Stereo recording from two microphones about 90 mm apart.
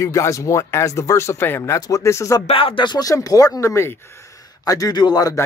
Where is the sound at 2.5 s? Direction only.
75° left (ahead or behind).